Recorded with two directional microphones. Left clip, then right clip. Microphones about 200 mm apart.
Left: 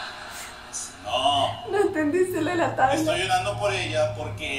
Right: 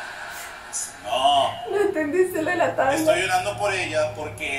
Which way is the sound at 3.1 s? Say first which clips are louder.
Right 3 dB; 20° right (ahead or behind).